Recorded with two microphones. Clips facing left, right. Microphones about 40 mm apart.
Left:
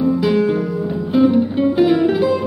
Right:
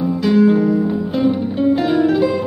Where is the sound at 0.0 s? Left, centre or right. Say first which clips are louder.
Right 1 dB; centre.